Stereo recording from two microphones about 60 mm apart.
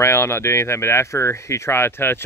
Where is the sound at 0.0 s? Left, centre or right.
Left.